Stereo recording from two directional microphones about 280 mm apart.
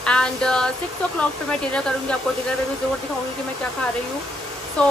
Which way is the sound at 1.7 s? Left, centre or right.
Centre.